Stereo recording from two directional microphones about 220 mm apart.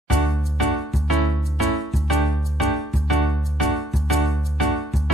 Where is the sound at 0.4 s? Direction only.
Centre (ahead or behind).